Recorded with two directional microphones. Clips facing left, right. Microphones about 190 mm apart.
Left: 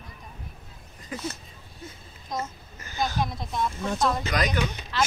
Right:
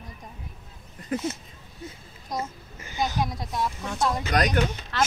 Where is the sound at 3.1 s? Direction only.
10° right (ahead or behind).